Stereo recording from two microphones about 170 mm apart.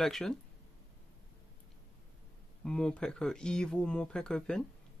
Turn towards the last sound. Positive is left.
turn(degrees=5)  # may be behind; listen again after turning